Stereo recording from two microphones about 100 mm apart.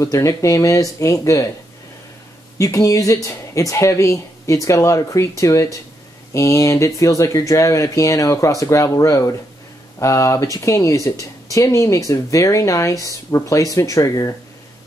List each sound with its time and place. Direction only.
0.0 s speech: 35° left (ahead or behind)
2.6 s speech: 35° left (ahead or behind)